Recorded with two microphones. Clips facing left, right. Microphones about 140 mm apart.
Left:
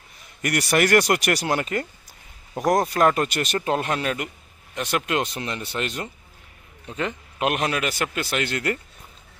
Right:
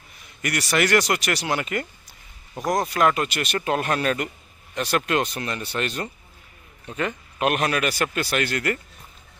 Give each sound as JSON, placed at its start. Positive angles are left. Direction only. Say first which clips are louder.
{"t": 0.4, "sound": "speech", "louder": "left 2 dB", "side_deg": 45}
{"t": 2.9, "sound": "speech", "louder": "left 1 dB", "side_deg": 40}
{"t": 3.5, "sound": "speech", "louder": "right 1 dB", "side_deg": 30}